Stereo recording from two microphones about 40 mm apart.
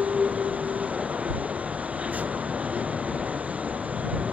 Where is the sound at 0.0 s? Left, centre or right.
Right.